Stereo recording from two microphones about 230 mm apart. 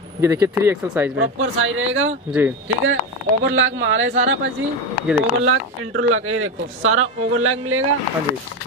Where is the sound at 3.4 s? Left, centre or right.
Right.